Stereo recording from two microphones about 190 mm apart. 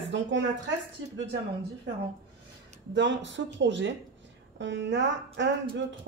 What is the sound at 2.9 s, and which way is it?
Speech, 70° right (ahead or behind).